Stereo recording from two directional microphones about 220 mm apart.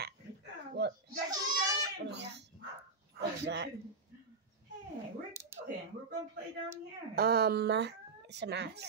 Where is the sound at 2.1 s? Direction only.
50° right (ahead or behind).